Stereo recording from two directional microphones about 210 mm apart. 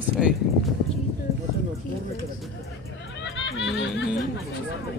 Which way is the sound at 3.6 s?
55° left (ahead or behind).